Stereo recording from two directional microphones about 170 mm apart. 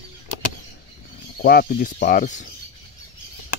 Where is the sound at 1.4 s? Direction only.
60° left (ahead or behind).